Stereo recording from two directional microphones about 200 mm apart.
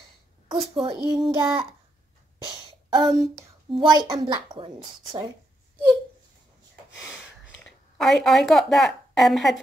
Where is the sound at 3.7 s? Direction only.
20° right (ahead or behind).